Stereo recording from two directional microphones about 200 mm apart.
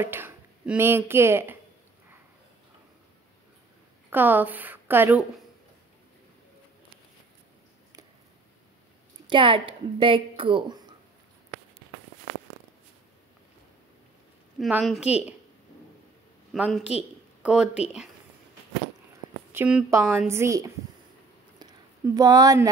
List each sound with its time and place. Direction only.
0.0 s speech: 10° right (ahead or behind)
4.1 s a woman's voice: 10° right (ahead or behind)
9.3 s speech: 25° right (ahead or behind)
14.6 s a woman's voice: centre (ahead or behind)
16.5 s a woman's voice: 5° right (ahead or behind)
17.4 s a sound: 5° right (ahead or behind)
19.5 s a woman's voice: 10° right (ahead or behind)
21.5 s a sound: 20° right (ahead or behind)